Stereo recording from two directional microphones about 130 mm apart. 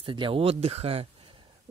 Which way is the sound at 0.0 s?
40° right (ahead or behind).